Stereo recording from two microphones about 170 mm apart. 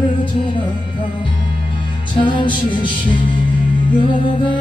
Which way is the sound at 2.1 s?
30° left (ahead or behind).